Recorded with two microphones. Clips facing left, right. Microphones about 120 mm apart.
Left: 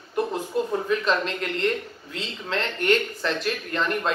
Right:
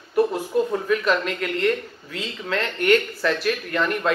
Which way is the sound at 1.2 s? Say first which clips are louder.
Right 2 dB; 30° left (ahead or behind).